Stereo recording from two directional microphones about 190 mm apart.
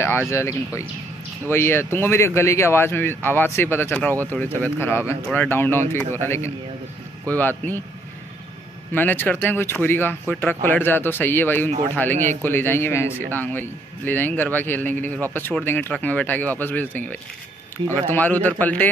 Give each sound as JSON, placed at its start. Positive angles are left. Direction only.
{"t": 0.3, "sound": "speech", "side_deg": 15}
{"t": 8.9, "sound": "speech", "side_deg": 10}
{"t": 17.8, "sound": "speech", "side_deg": -25}
{"t": 18.1, "sound": "speech", "side_deg": 10}